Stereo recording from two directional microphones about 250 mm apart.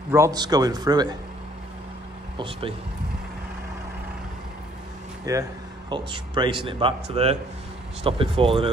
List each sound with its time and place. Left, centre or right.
0.1 s a man's voice: centre
2.3 s speech: right
5.2 s a man's voice: centre